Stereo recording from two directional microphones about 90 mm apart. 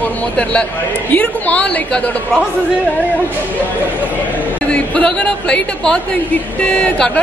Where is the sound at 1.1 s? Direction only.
15° left (ahead or behind).